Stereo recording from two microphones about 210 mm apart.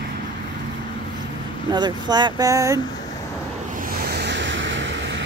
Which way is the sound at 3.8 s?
55° right (ahead or behind).